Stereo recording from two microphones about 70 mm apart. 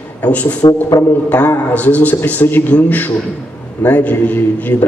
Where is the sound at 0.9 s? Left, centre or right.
Left.